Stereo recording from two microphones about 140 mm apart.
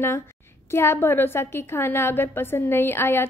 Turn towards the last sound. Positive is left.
turn(degrees=15)  # may be behind; listen again after turning